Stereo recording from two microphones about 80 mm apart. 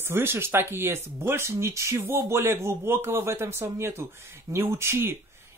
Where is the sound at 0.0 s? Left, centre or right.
Right.